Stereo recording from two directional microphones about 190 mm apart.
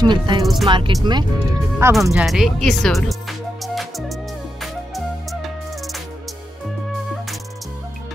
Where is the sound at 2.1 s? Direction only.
Centre (ahead or behind).